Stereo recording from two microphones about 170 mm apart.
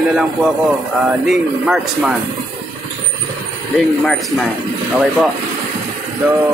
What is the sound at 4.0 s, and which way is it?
Speech, centre (ahead or behind).